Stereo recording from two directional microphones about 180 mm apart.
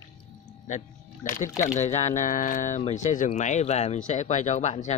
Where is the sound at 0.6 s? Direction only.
45° left (ahead or behind).